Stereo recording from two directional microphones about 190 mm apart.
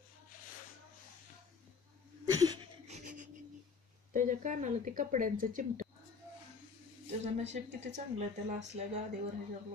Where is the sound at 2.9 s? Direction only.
40° right (ahead or behind).